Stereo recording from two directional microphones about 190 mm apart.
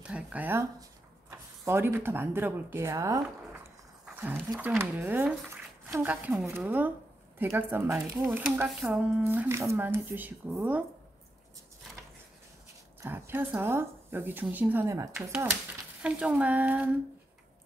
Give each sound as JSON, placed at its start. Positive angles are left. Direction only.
{"t": 0.0, "sound": "speech", "side_deg": -5}
{"t": 13.0, "sound": "speech", "side_deg": -10}